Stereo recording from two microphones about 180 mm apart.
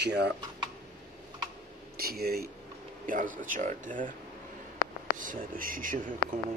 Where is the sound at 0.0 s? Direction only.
70° right (ahead or behind).